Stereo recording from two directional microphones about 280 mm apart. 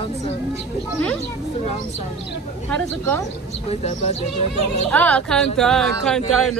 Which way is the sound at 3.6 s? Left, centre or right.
Left.